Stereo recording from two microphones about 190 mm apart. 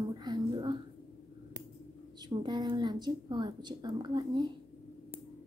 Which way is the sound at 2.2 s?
25° right (ahead or behind).